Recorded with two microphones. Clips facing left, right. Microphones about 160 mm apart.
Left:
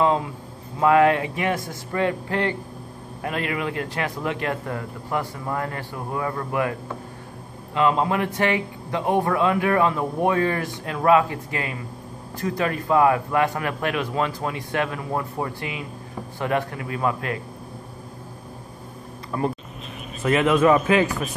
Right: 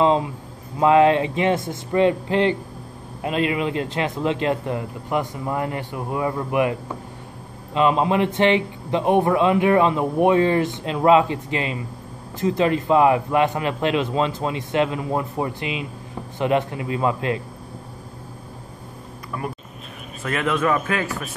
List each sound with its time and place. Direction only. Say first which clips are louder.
0.0 s a man's voice: right 3 dB; 20° right (ahead or behind)
19.3 s speech: left 5 dB; 30° left (ahead or behind)
20.2 s a man's voice: left 4 dB; 20° left (ahead or behind)